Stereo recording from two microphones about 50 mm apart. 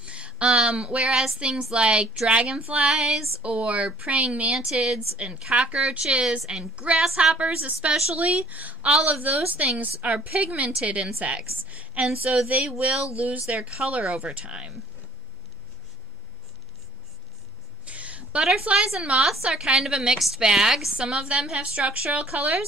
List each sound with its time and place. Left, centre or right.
0.0 s a sound: right
0.5 s a woman's voice: centre
1.1 s a woman's voice: centre; by 2.9 s right
2.9 s a woman's voice: centre
3.4 s a woman's voice: right
4.7 s a woman's voice: centre
17.8 s a sound: right
18.8 s a woman's voice: centre
21.0 s a woman's voice: centre